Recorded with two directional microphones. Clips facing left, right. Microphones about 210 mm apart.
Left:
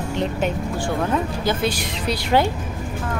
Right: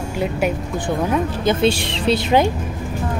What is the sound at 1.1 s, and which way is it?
Speech, 25° right (ahead or behind).